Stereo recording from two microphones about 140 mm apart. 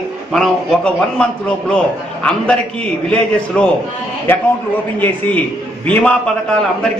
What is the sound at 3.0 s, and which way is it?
Speech, 5° left (ahead or behind).